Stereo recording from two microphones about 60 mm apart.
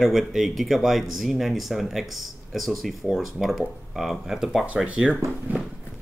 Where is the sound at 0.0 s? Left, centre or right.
Centre.